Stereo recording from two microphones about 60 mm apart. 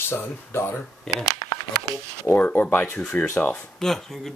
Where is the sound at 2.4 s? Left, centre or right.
Left.